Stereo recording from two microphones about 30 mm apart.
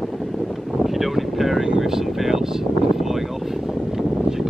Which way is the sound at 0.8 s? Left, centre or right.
Centre.